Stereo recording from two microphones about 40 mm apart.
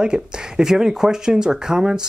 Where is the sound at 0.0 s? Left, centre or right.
Centre.